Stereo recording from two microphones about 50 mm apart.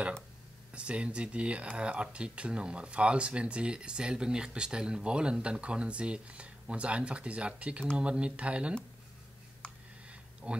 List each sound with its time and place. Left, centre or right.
0.7 s speech: right
9.6 s a sound: left
10.4 s speech: right